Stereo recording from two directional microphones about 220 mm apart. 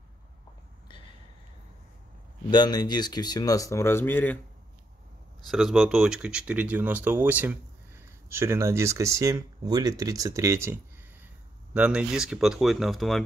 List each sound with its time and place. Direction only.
2.5 s speech: 20° left (ahead or behind)
5.5 s speech: centre (ahead or behind)